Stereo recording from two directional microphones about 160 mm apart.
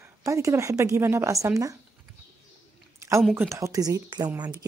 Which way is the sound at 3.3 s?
15° right (ahead or behind).